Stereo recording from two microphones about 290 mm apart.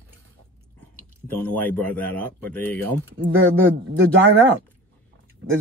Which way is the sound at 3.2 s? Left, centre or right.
Right.